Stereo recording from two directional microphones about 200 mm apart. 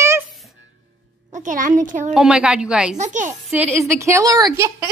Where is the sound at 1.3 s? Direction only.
40° right (ahead or behind).